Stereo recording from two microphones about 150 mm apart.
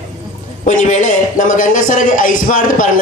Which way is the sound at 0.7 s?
55° left (ahead or behind).